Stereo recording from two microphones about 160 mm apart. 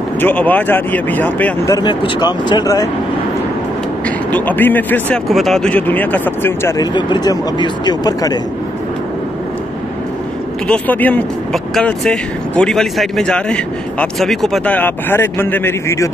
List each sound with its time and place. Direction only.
0.2 s speech: 10° left (ahead or behind)
1.8 s speech: 30° left (ahead or behind)
4.3 s speech: 10° left (ahead or behind)
6.8 s speech: 30° left (ahead or behind)
10.7 s speech: 10° left (ahead or behind)